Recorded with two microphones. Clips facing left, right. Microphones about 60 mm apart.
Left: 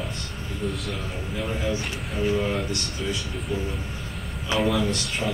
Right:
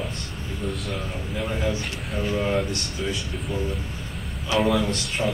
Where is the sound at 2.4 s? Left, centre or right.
Centre.